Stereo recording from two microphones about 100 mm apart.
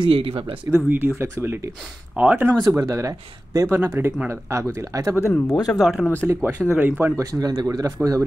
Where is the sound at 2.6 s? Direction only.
35° right (ahead or behind).